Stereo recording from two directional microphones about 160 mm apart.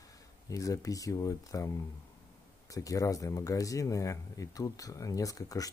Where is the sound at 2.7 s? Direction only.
20° left (ahead or behind).